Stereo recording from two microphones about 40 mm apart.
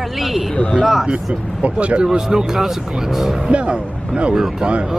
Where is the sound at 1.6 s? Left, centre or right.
Right.